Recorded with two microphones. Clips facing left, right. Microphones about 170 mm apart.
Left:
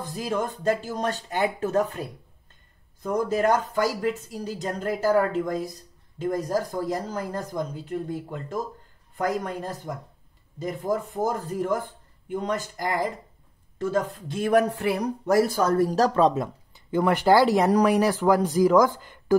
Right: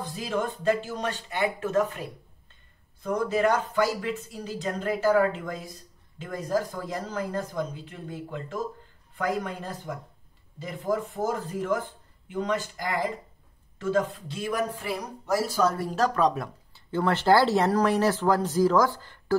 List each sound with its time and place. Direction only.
0.0 s speech: 45° left (ahead or behind)
15.9 s speech: 30° left (ahead or behind)